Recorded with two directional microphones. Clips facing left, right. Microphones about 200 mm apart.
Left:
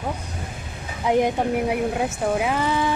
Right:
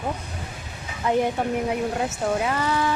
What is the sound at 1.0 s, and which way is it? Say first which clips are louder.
Speech: left 2 dB; 15° left (ahead or behind).